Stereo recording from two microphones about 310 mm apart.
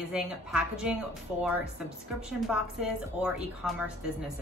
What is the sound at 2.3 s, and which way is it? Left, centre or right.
A woman's voice, centre.